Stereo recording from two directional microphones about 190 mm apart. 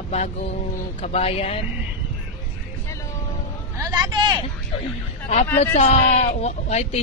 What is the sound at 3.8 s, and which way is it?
Speech, 20° right (ahead or behind).